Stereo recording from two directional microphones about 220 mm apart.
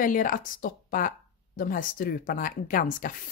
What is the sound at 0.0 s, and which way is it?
Speech, 40° left (ahead or behind).